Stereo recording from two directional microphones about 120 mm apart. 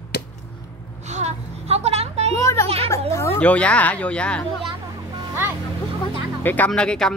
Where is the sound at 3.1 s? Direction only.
20° left (ahead or behind).